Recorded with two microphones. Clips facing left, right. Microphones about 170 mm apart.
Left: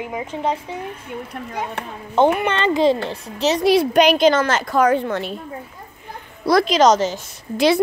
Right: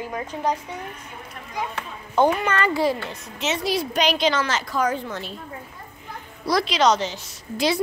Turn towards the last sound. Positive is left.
turn(degrees=65)  # may be behind; listen again after turning